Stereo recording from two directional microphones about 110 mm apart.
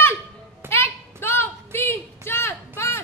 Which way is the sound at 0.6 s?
20° right (ahead or behind).